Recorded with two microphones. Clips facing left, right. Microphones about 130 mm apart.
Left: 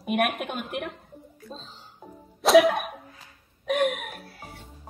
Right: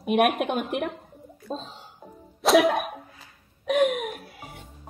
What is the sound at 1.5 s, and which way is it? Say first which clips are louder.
Speech: right 9 dB; 50° right (ahead or behind).